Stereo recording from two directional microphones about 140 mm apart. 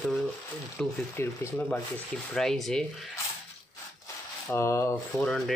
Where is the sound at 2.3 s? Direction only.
5° left (ahead or behind).